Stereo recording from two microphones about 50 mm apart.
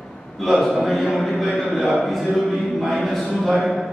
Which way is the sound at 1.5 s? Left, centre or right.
Centre.